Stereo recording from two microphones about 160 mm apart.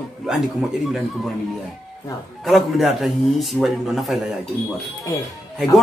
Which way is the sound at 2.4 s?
Centre (ahead or behind).